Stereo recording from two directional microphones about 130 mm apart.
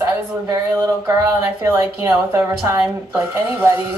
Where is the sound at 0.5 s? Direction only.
25° right (ahead or behind).